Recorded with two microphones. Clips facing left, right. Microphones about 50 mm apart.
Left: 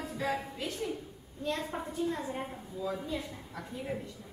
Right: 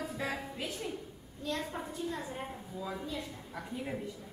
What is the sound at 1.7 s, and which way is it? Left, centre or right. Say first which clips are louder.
Speech: left 4 dB; centre.